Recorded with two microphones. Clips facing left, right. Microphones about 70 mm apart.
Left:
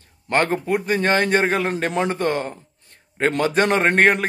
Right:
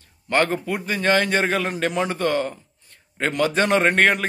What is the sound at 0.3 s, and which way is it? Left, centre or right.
A man's voice, left.